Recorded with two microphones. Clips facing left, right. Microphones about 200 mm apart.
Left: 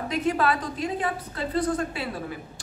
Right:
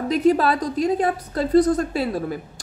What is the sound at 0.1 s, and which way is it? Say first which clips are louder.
A woman's voice: right 7 dB; 35° right (ahead or behind).